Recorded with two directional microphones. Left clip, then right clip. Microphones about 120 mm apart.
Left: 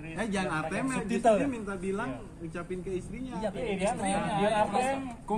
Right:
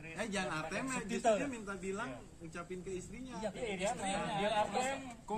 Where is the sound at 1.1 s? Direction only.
35° left (ahead or behind).